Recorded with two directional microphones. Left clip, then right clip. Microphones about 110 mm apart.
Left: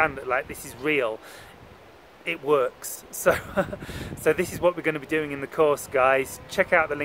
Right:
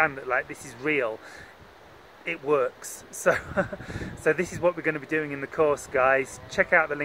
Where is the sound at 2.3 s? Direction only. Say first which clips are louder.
Left 2 dB; 15° left (ahead or behind).